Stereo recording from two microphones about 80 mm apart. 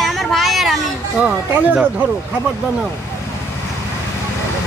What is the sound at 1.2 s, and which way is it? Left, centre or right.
Speech, centre.